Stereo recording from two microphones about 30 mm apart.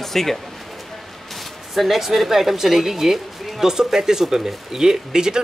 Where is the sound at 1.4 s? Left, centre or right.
Centre.